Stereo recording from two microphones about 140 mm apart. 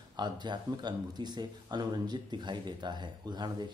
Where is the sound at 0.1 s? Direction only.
30° right (ahead or behind).